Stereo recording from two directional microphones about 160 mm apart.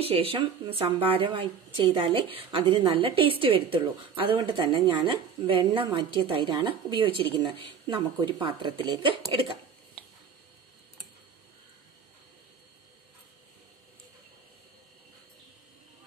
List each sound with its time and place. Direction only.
0.0 s a woman's voice: 35° right (ahead or behind)